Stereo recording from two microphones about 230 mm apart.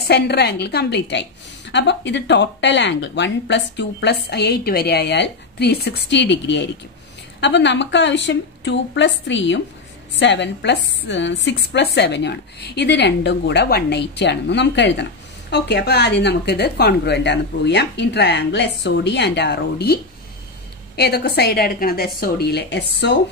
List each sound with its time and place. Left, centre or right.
0.1 s speech: left